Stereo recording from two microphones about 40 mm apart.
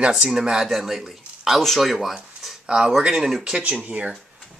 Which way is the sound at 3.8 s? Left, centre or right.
Right.